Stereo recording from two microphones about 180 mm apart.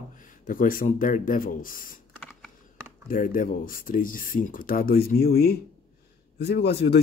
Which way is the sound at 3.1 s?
50° left (ahead or behind).